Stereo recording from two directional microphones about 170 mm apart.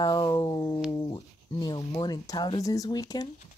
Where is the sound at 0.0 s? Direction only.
25° left (ahead or behind).